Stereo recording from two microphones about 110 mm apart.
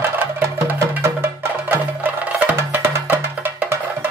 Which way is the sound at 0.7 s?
20° right (ahead or behind).